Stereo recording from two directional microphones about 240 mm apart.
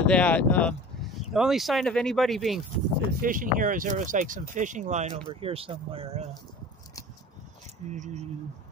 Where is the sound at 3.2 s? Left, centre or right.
Right.